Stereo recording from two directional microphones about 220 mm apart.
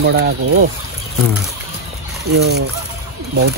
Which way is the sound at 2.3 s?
45° right (ahead or behind).